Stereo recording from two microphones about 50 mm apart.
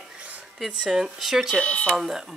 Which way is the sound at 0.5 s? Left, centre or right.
Centre.